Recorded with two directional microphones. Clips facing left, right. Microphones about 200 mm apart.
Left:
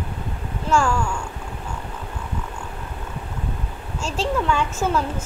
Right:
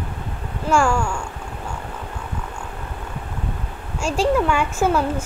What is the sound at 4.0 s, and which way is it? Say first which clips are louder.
A woman's voice: right 5 dB; 10° right (ahead or behind).